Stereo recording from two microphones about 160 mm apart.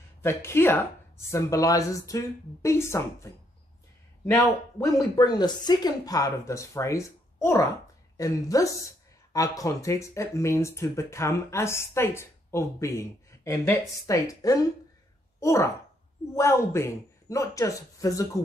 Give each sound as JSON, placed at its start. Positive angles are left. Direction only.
{"t": 0.2, "sound": "speech", "side_deg": 15}